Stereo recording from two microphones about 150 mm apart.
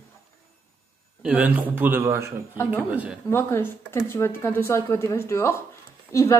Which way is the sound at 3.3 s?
15° left (ahead or behind).